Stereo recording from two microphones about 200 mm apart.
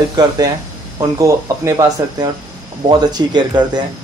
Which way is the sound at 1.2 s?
15° right (ahead or behind).